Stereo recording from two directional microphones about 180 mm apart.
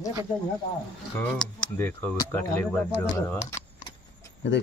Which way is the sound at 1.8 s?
10° left (ahead or behind).